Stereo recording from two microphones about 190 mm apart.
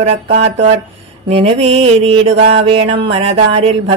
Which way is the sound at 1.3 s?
30° right (ahead or behind).